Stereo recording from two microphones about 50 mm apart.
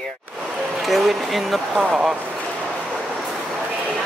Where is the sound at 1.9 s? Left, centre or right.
Centre.